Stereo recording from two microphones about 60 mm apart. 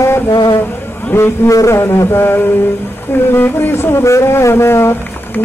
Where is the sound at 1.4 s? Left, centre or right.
Left.